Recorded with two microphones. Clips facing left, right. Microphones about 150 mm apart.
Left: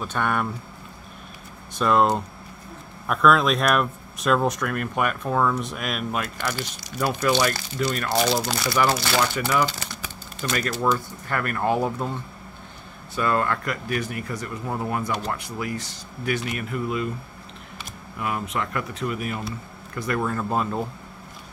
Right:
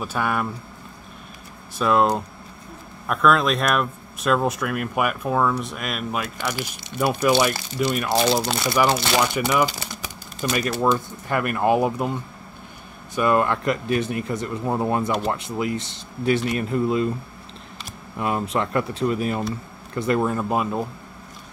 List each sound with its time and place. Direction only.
0.0 s speech: 5° right (ahead or behind)
1.8 s speech: centre (ahead or behind)
6.8 s speech: 25° right (ahead or behind)
18.2 s speech: 30° right (ahead or behind); by 20.8 s 10° right (ahead or behind)